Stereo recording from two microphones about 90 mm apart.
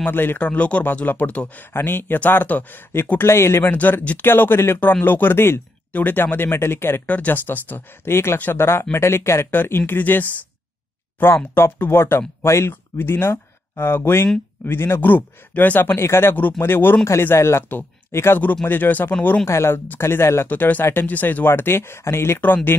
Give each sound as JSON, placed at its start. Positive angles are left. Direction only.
{"t": 0.0, "sound": "speech", "side_deg": 25}